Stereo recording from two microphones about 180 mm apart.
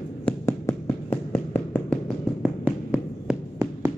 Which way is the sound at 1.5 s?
10° left (ahead or behind).